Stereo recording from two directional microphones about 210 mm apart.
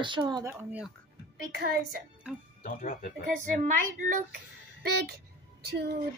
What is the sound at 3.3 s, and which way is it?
Speech, 35° right (ahead or behind).